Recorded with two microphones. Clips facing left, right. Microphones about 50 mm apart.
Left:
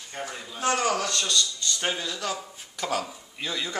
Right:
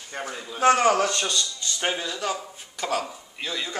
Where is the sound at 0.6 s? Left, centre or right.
Right; by 3.7 s centre.